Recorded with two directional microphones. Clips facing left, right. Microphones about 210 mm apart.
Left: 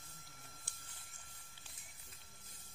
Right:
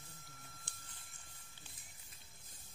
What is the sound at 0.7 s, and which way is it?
Printer, 20° right (ahead or behind).